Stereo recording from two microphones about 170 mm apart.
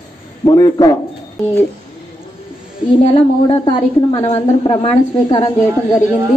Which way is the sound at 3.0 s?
35° left (ahead or behind).